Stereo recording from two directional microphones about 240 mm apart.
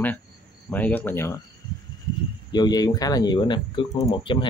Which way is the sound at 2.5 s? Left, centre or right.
Centre.